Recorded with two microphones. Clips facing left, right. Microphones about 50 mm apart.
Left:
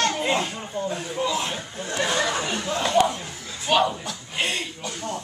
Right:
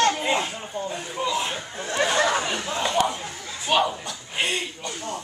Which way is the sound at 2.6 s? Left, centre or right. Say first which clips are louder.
Left 5 dB; centre.